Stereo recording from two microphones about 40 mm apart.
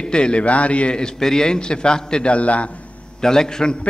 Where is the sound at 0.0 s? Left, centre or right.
Left.